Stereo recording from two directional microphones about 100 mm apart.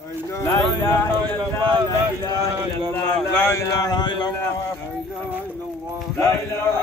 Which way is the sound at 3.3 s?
25° left (ahead or behind).